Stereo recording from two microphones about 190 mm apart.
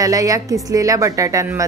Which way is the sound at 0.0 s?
15° right (ahead or behind).